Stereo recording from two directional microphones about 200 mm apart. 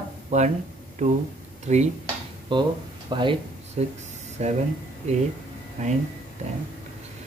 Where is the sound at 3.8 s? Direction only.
35° right (ahead or behind).